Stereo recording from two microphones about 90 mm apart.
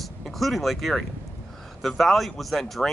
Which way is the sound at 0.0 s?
Centre (ahead or behind).